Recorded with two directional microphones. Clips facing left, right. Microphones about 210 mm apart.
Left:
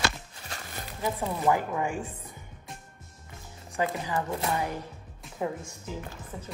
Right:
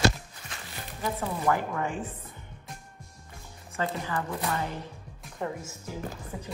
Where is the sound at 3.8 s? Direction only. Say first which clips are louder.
Left 2 dB; 15° left (ahead or behind).